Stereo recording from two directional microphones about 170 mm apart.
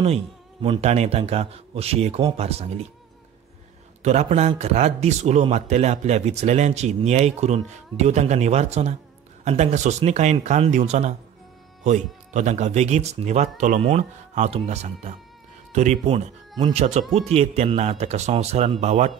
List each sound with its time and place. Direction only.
0.0 s speech: 35° right (ahead or behind)
4.0 s speech: 40° right (ahead or behind)